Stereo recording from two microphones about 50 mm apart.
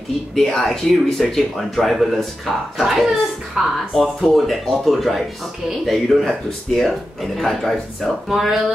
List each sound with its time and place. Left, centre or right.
0.6 s speech: centre
3.9 s speech: centre